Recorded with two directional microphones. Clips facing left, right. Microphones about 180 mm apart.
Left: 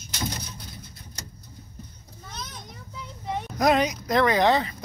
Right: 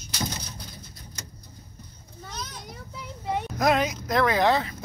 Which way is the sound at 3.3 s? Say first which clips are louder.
Left 1 dB; centre (ahead or behind).